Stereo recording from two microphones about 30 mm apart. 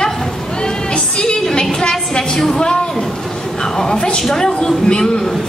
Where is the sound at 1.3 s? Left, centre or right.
Left.